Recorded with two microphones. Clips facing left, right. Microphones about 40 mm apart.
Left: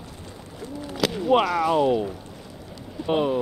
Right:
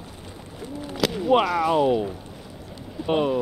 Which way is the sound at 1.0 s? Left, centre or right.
Centre.